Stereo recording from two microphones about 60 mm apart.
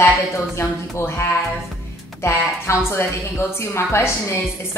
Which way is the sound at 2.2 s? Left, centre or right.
Left.